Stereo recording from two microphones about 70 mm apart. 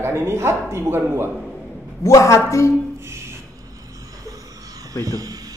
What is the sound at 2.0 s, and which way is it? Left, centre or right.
Speech, left.